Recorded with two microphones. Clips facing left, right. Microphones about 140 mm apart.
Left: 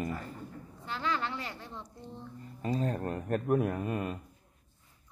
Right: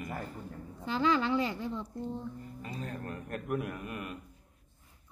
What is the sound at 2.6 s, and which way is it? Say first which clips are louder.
Speech: left 11 dB; 35° left (ahead or behind).